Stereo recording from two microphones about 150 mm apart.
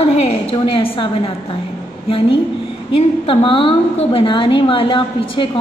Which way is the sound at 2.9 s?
35° left (ahead or behind).